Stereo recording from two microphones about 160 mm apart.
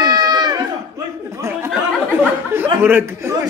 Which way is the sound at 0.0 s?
25° right (ahead or behind).